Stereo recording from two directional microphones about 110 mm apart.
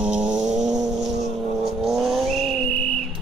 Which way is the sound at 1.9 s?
Centre (ahead or behind).